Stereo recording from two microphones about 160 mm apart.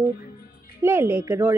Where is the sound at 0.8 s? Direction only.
15° right (ahead or behind).